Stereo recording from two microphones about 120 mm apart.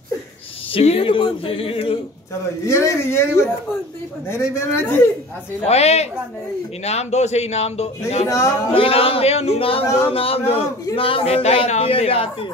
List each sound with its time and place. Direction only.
0.7 s a man's voice: 50° left (ahead or behind)
2.6 s speech: 25° left (ahead or behind)
5.7 s a man's voice: 60° left (ahead or behind)
8.3 s speech: 25° left (ahead or behind)
8.7 s a man's voice: 50° left (ahead or behind)